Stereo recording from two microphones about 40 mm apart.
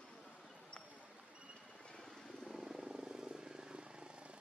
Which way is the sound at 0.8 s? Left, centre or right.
Right.